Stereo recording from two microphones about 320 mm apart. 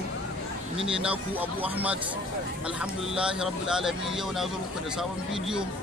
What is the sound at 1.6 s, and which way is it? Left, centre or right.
Speech, centre.